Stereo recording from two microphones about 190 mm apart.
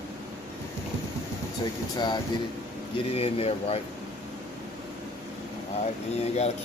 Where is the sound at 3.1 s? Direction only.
30° left (ahead or behind).